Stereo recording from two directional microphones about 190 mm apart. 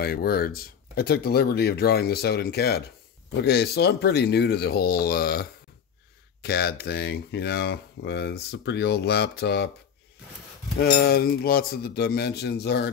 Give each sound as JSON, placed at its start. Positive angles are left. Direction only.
{"t": 0.0, "sound": "speech", "side_deg": 55}
{"t": 10.8, "sound": "speech", "side_deg": 55}